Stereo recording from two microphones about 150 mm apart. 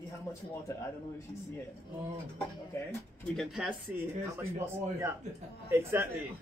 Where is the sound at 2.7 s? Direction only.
15° left (ahead or behind).